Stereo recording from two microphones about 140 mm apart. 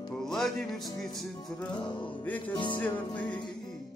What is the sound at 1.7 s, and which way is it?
Music, 35° left (ahead or behind).